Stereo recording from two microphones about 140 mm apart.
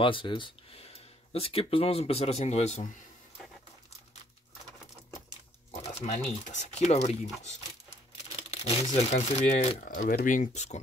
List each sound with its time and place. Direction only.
0.0 s speech: 35° left (ahead or behind)
5.8 s speech: 50° left (ahead or behind)
8.4 s a sound: 45° left (ahead or behind)
8.8 s speech: 50° left (ahead or behind)
9.8 s speech: 85° left; by 10.8 s 55° left (ahead or behind)